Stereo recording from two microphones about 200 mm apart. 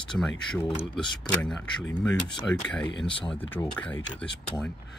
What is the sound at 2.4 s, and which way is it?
Speech, 5° left (ahead or behind).